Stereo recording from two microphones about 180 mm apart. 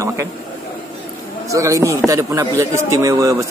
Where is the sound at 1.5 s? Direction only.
15° right (ahead or behind).